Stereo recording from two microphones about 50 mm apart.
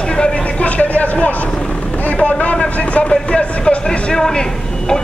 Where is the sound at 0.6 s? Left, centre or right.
Left.